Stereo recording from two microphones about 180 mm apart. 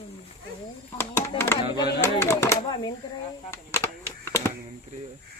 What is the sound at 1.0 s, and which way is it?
Speech, 15° left (ahead or behind).